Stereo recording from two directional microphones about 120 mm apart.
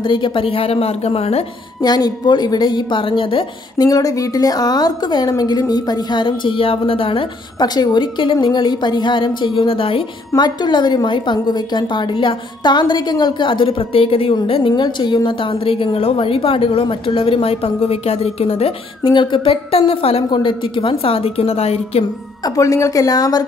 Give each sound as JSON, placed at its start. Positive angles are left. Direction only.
{"t": 0.0, "sound": "a woman's voice", "side_deg": 45}
{"t": 1.8, "sound": "a woman's voice", "side_deg": 35}
{"t": 3.8, "sound": "a woman's voice", "side_deg": 30}
{"t": 10.3, "sound": "a woman's voice", "side_deg": 35}
{"t": 19.1, "sound": "a woman's voice", "side_deg": 40}
{"t": 20.2, "sound": "a woman's voice", "side_deg": 40}
{"t": 22.4, "sound": "a woman's voice", "side_deg": 25}